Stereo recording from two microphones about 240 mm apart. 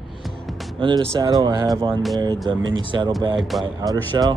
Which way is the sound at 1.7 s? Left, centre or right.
Centre.